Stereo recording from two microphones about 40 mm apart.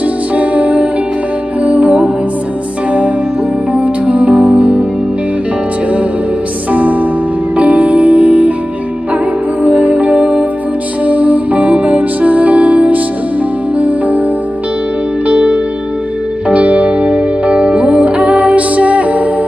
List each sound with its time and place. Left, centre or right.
0.4 s music: right
3.7 s music: right
6.7 s music: right
9.6 s music: right
15.2 s music: right